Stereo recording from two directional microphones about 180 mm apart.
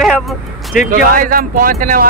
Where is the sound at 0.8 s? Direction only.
50° right (ahead or behind).